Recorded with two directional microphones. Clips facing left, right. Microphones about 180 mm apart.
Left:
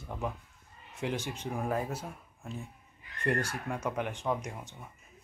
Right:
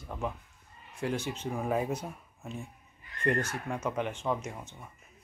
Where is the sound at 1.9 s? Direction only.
5° left (ahead or behind).